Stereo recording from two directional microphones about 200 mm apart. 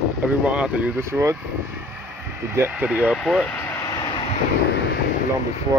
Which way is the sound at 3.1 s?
5° left (ahead or behind).